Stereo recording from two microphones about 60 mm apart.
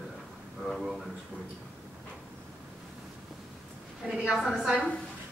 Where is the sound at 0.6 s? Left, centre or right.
Centre.